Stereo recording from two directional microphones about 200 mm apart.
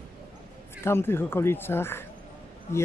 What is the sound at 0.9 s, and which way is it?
Speech, 10° left (ahead or behind).